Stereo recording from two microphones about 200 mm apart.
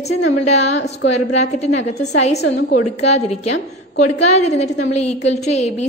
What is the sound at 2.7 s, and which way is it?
A woman's voice, 35° left (ahead or behind).